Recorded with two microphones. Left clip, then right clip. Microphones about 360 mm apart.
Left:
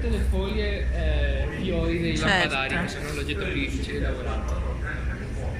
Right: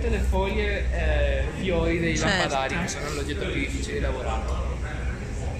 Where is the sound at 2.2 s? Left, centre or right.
Centre.